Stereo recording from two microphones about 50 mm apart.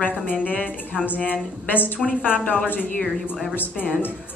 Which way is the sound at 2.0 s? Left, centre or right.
Left.